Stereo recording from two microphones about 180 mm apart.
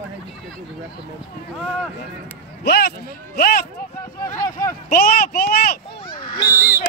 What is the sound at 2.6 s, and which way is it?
Speech, 65° left (ahead or behind).